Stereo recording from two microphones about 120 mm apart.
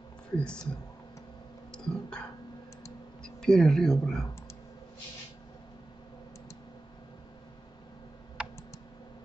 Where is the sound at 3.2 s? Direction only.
5° left (ahead or behind).